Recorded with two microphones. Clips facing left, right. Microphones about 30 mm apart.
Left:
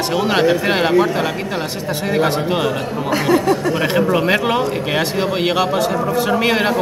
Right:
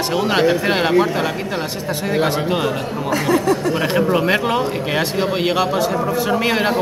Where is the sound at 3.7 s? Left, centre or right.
Centre.